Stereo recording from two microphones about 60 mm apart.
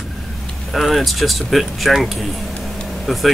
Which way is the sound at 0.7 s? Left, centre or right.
Centre.